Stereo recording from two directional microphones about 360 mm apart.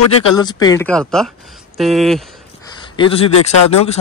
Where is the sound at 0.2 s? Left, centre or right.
Centre.